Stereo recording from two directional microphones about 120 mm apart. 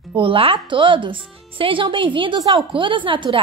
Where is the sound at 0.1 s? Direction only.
45° right (ahead or behind).